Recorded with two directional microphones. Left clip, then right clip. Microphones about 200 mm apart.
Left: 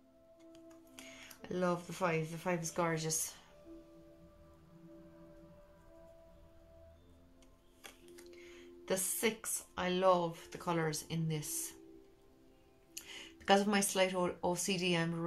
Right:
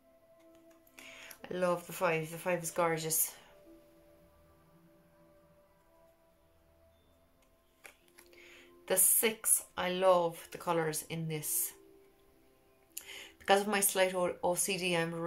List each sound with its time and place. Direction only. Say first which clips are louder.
0.9 s speech: right 4 dB; 10° right (ahead or behind)
8.4 s speech: left 2 dB; 10° right (ahead or behind)
12.9 s speech: right 1 dB; 5° right (ahead or behind)